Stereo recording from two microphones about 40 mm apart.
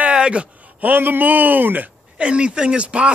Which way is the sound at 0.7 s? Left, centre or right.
Right.